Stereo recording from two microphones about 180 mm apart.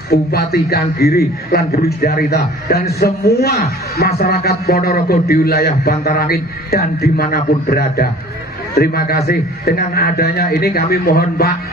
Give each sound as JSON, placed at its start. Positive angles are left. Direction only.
{"t": 0.1, "sound": "speech", "side_deg": 60}